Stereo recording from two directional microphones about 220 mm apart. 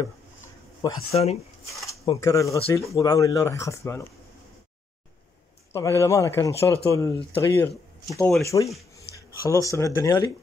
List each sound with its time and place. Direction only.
1.1 s speech: 30° left (ahead or behind)
1.9 s speech: 15° left (ahead or behind)
5.7 s speech: 10° left (ahead or behind)